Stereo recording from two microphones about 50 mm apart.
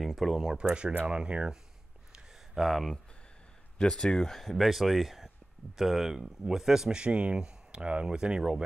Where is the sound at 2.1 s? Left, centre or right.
Centre.